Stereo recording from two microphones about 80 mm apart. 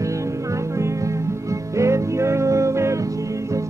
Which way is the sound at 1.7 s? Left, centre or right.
Right.